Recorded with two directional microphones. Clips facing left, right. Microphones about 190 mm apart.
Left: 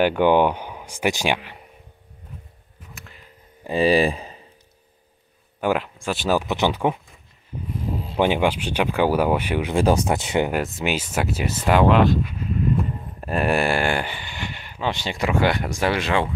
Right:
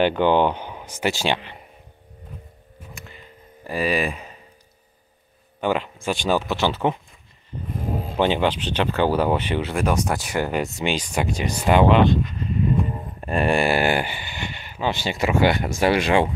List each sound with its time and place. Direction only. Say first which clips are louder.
0.0 s speech: left 1 dB; 10° left (ahead or behind)
2.9 s a sound: right 2 dB; centre (ahead or behind)
3.6 s speech: left 5 dB; 25° left (ahead or behind)
5.6 s speech: left 1 dB; 5° left (ahead or behind)
6.4 s speech: left 1 dB; 15° left (ahead or behind)
8.2 s speech: left 1 dB; 10° left (ahead or behind)
9.8 s speech: left 5 dB; 30° left (ahead or behind)
10.5 s speech: even; centre (ahead or behind); by 16.3 s 15° right (ahead or behind)